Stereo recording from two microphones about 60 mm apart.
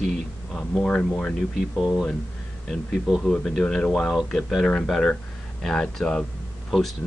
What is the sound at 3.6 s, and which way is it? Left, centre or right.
Speech, centre.